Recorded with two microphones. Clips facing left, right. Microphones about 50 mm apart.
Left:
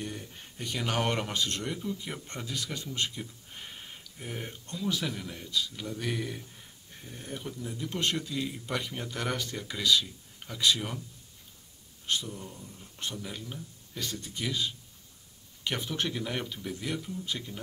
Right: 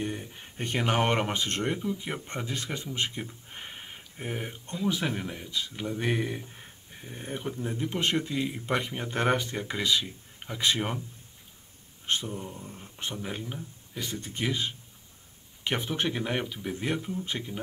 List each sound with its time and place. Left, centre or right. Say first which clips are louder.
0.0 s speech: right 5 dB; right
0.6 s speech: right 4 dB; right
1.8 s speech: right 4 dB; right
5.3 s speech: left 1 dB; right
7.9 s speech: right 2 dB; right
12.1 s speech: right 3 dB; right